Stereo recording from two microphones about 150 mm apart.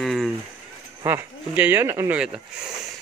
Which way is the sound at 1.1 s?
15° right (ahead or behind).